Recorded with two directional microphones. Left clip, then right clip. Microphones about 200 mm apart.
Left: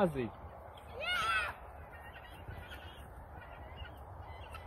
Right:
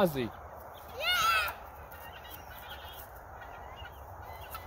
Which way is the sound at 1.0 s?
55° right (ahead or behind).